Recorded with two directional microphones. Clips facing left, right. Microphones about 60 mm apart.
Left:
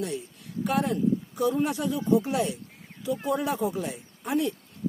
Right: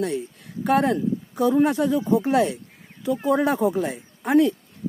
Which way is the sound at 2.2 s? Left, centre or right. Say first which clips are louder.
Right 7 dB; right.